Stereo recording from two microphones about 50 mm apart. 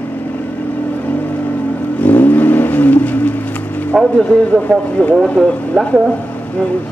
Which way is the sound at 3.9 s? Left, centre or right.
Centre.